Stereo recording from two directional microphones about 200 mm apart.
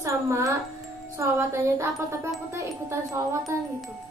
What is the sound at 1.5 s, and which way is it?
A woman's voice, 15° right (ahead or behind).